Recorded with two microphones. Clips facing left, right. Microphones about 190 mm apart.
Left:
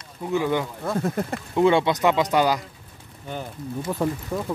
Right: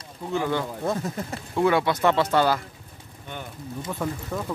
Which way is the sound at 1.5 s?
25° left (ahead or behind).